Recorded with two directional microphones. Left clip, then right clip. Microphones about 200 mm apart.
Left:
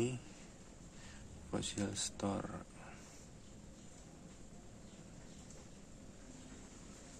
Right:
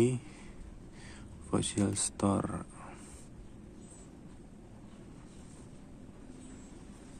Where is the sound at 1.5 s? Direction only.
30° right (ahead or behind).